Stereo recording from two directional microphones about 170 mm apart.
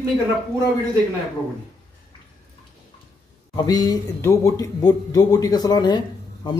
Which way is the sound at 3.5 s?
25° left (ahead or behind).